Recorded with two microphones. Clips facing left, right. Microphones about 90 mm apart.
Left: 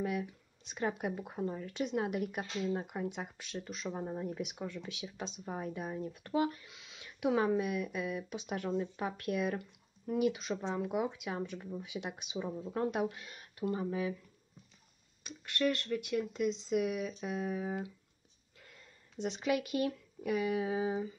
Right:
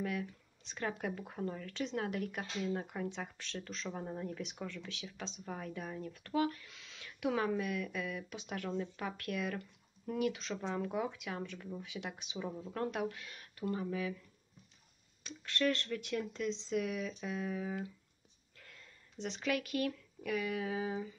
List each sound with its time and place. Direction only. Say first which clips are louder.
0.0 s speech: left 3 dB; 20° left (ahead or behind)
15.2 s speech: left 1 dB; 10° left (ahead or behind)